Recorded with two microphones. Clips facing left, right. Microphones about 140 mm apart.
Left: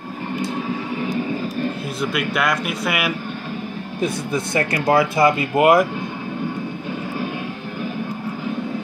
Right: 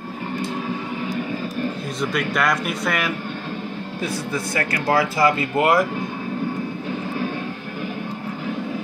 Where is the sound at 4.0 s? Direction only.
20° left (ahead or behind).